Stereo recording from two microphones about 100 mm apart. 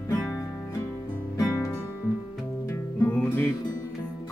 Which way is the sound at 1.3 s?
35° left (ahead or behind).